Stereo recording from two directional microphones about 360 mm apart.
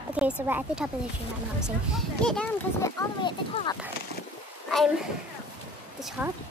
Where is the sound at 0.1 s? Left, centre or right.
Centre.